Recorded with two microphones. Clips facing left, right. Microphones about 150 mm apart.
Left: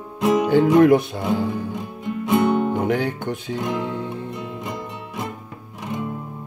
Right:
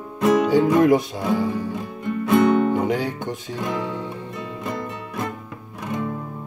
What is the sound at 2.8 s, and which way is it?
Music, 60° left (ahead or behind).